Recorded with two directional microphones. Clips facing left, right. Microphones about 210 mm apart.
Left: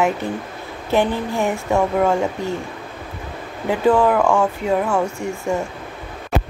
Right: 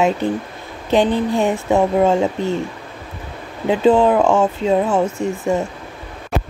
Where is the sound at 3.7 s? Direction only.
20° right (ahead or behind).